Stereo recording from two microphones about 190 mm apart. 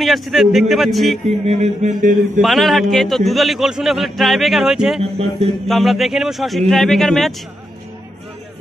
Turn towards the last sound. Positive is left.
turn(degrees=0)  # may be behind; listen again after turning